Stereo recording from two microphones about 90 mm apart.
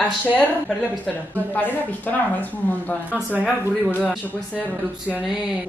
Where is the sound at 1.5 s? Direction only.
20° left (ahead or behind).